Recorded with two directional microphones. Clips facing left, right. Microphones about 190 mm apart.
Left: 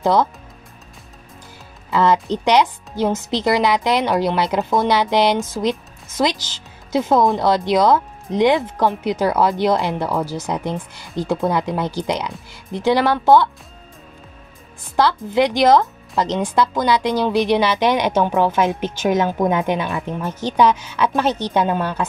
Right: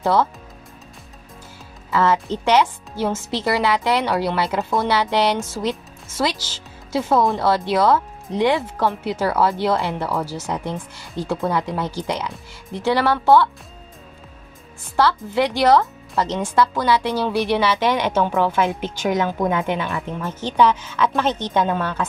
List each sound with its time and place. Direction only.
0.0 s speech: 15° left (ahead or behind)
1.9 s a woman's voice: 15° left (ahead or behind)
15.0 s a woman's voice: 15° left (ahead or behind)